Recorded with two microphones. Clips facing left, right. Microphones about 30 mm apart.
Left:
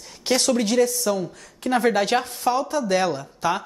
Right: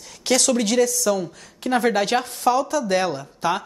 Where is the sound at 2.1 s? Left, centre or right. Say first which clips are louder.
Even; centre.